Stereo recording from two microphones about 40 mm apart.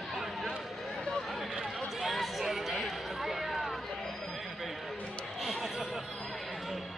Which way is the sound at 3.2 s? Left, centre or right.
Centre.